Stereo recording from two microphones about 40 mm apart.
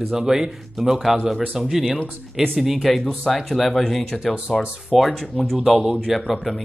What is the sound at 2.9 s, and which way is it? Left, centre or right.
Speech, centre.